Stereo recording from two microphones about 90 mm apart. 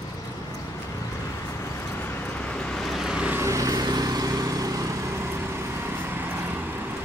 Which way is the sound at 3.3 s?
30° right (ahead or behind).